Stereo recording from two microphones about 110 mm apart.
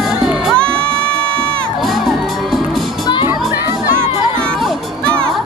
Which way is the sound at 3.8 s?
35° left (ahead or behind).